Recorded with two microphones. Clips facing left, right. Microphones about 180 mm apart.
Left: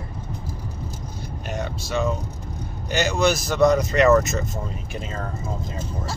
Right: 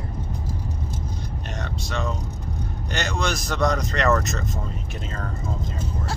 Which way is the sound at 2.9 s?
5° left (ahead or behind).